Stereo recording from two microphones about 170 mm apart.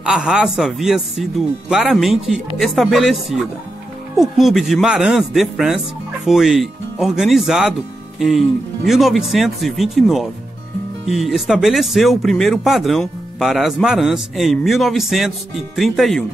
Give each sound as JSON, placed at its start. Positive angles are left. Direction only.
{"t": 0.0, "sound": "speech", "side_deg": -5}